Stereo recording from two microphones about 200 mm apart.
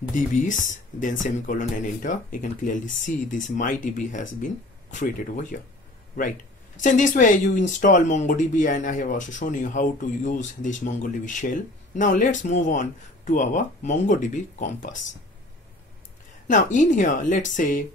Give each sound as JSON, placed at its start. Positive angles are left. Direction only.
{"t": 0.5, "sound": "speech", "side_deg": 40}
{"t": 6.8, "sound": "speech", "side_deg": 40}
{"t": 16.4, "sound": "speech", "side_deg": 40}